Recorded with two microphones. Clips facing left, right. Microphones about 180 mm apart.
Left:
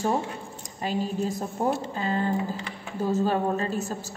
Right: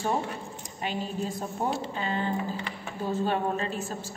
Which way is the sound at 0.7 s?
40° left (ahead or behind).